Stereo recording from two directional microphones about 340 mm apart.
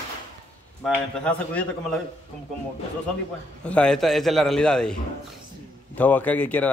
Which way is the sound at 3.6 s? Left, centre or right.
Centre.